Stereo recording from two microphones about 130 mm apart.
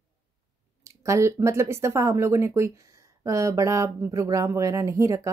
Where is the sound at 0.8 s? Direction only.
25° right (ahead or behind).